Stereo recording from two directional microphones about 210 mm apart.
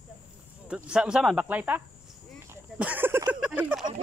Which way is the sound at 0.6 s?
5° right (ahead or behind).